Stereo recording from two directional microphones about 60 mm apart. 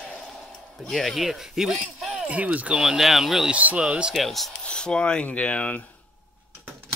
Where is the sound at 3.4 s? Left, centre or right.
Right.